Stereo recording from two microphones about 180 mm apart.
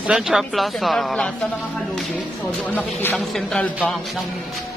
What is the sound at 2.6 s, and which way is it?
Speech, 10° left (ahead or behind).